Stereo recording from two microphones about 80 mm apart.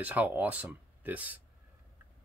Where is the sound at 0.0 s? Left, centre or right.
Right.